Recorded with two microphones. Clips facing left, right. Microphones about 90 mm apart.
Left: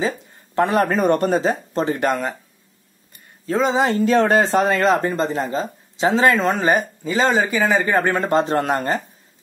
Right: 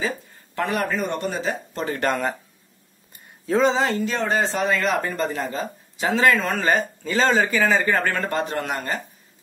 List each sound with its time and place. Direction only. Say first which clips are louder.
0.6 s speech: left 7 dB; 25° left (ahead or behind)
0.8 s speech: left 8 dB; 45° left (ahead or behind)
2.0 s speech: left 2 dB; 5° left (ahead or behind)
3.4 s speech: right 1 dB; centre (ahead or behind)
3.7 s speech: left 4 dB; 20° left (ahead or behind)
4.2 s speech: left 6 dB; 50° left (ahead or behind)
4.8 s speech: left 5 dB; 25° left (ahead or behind)